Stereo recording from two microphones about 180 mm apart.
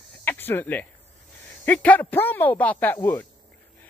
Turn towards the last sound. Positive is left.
turn(degrees=20)  # may be behind; listen again after turning